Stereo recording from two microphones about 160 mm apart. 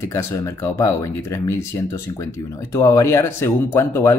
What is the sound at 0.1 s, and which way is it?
A man's voice, 20° left (ahead or behind).